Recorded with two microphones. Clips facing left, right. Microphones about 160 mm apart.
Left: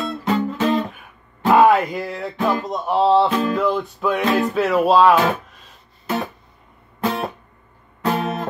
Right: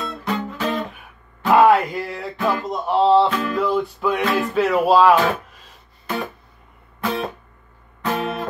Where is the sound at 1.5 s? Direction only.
Centre (ahead or behind).